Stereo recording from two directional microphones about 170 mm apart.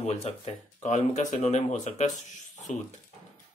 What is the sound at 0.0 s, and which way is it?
Speech, 40° left (ahead or behind).